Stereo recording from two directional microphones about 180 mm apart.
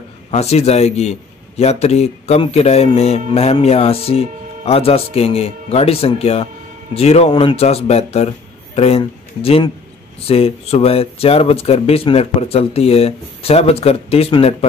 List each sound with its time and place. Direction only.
0.3 s a man's voice: 35° left (ahead or behind)